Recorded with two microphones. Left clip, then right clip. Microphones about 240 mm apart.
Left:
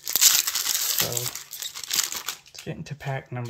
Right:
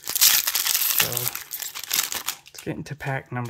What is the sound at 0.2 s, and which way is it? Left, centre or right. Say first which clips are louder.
Crumpling: right 1 dB; centre.